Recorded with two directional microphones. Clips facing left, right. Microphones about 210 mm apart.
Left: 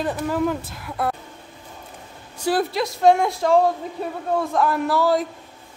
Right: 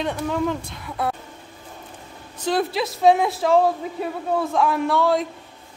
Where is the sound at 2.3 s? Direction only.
5° left (ahead or behind).